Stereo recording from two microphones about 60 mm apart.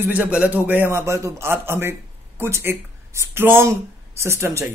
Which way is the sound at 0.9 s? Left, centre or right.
Right.